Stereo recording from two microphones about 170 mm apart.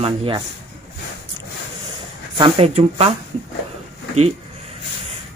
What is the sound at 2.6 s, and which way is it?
Speech, 40° right (ahead or behind).